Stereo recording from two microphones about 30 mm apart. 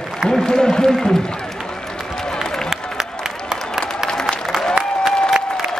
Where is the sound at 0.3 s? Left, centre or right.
Left.